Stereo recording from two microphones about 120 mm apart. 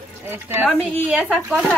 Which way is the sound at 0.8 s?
5° right (ahead or behind).